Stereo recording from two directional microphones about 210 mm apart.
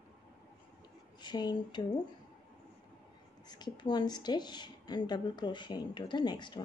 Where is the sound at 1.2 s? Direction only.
20° left (ahead or behind).